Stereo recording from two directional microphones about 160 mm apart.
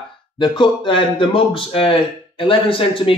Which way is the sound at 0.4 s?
30° left (ahead or behind).